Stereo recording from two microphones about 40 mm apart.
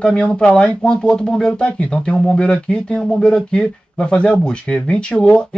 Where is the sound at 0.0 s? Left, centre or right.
Left.